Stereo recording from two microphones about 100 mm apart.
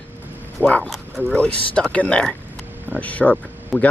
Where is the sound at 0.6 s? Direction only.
15° left (ahead or behind).